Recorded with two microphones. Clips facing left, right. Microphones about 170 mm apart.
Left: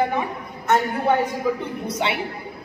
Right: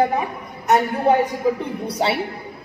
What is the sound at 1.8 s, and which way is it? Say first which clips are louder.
Speech: right 3 dB; 35° right (ahead or behind).